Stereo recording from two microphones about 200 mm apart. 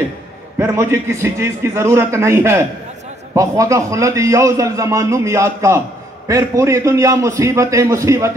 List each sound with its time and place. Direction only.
0.6 s a man's voice: 15° right (ahead or behind)